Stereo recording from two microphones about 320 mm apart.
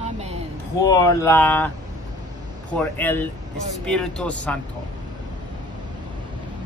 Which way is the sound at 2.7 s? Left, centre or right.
Centre.